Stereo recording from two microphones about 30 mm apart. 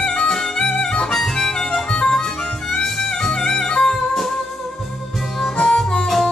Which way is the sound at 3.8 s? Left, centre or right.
Centre.